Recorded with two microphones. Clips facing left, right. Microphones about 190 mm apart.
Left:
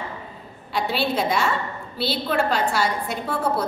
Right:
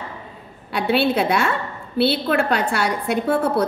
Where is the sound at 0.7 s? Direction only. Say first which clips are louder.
Right 5 dB; 60° right (ahead or behind).